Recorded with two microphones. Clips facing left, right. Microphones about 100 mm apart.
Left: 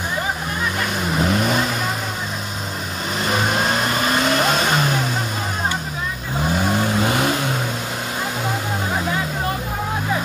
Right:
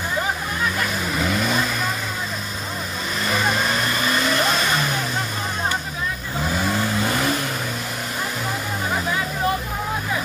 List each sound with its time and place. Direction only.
1.1 s vehicle: 20° left (ahead or behind)
3.3 s vehicle: 30° left (ahead or behind)
6.6 s vehicle: 15° left (ahead or behind)